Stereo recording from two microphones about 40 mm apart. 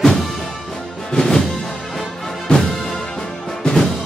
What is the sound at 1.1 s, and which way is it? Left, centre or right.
Music, centre.